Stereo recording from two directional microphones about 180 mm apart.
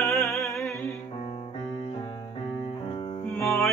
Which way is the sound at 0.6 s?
15° left (ahead or behind).